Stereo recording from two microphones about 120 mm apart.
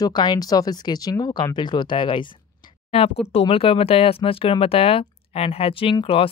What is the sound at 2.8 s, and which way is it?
Speech, 55° left (ahead or behind).